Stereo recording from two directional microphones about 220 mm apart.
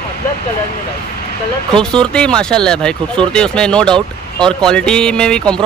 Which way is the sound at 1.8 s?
5° left (ahead or behind).